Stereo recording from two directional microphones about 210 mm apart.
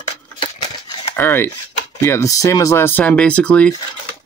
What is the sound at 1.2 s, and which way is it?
Speech, 10° left (ahead or behind).